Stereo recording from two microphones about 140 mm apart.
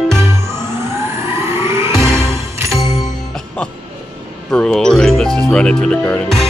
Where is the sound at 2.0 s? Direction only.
5° left (ahead or behind).